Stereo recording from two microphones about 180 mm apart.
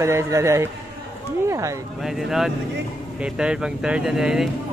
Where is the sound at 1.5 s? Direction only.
15° right (ahead or behind).